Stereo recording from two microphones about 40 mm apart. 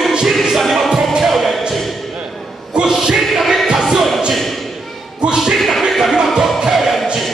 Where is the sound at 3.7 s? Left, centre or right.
Centre.